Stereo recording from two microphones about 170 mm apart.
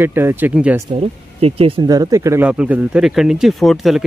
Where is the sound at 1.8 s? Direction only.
20° right (ahead or behind).